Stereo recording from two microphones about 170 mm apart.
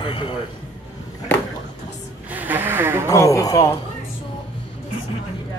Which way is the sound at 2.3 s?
10° right (ahead or behind).